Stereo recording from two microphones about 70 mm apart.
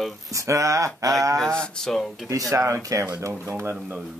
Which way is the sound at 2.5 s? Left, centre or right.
Right.